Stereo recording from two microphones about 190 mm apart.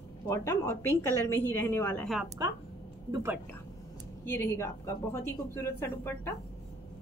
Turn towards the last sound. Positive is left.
turn(degrees=10)  # may be behind; listen again after turning